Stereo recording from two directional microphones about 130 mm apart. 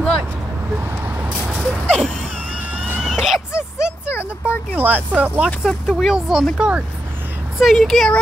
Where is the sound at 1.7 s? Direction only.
5° left (ahead or behind).